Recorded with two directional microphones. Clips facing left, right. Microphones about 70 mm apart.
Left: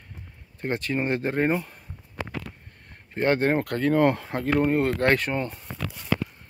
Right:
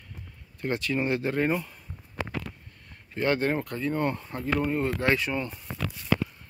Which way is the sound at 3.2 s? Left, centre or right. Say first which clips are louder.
Left 4 dB; left.